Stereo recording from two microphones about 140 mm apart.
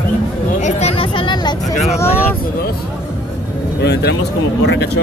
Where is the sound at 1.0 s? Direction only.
35° left (ahead or behind).